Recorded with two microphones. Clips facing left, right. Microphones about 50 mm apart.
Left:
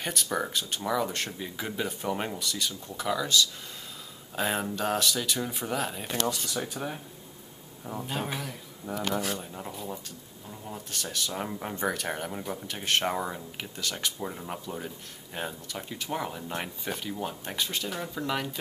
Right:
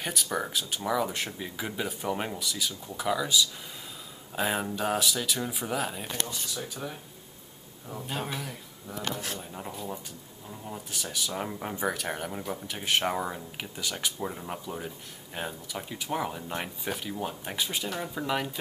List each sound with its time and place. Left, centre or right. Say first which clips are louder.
0.0 s speech: left 1 dB; centre
6.6 s speech: left 3 dB; left
8.1 s speech: even; centre